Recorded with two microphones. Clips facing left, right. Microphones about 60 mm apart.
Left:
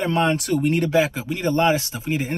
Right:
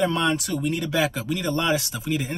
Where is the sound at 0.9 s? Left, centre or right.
Left.